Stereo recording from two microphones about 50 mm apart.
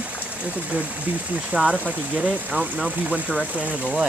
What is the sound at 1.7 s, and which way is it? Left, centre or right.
Speech, right.